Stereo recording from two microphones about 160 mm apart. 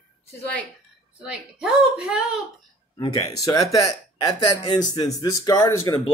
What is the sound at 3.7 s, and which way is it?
Speech, 25° left (ahead or behind).